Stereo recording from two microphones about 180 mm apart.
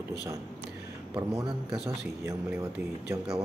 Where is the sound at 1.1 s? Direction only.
25° right (ahead or behind).